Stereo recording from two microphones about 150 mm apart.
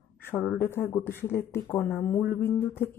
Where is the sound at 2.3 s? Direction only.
15° left (ahead or behind).